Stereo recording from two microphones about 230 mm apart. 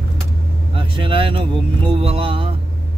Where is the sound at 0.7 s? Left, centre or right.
Right.